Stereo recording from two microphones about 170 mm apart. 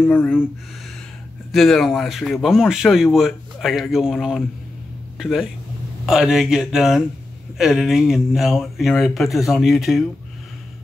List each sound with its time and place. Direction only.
0.0 s speech: 5° left (ahead or behind)
1.5 s speech: centre (ahead or behind)